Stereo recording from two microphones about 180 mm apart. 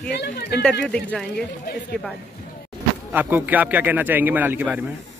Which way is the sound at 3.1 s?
10° right (ahead or behind).